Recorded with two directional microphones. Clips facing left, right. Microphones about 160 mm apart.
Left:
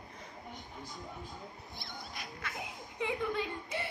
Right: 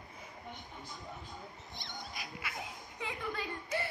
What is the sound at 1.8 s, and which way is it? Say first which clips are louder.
Dog: even; 10° left (ahead or behind).